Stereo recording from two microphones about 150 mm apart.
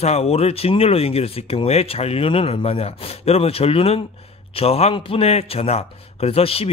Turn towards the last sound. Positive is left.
turn(degrees=40)  # may be behind; listen again after turning